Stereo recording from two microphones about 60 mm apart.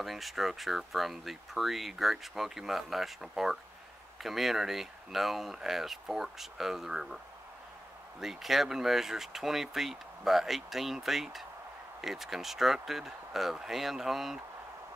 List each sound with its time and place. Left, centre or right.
0.0 s speech: centre
8.2 s speech: centre